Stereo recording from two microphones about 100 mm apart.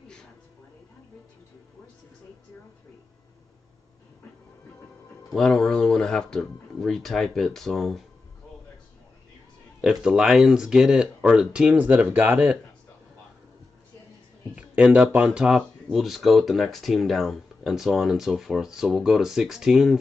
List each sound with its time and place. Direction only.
5.3 s speech: 5° left (ahead or behind)
9.8 s speech: 5° right (ahead or behind)
14.5 s speech: 15° right (ahead or behind)